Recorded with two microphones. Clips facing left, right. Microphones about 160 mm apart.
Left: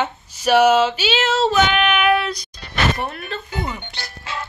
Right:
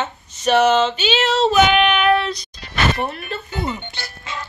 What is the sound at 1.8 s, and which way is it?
Child singing, 5° left (ahead or behind).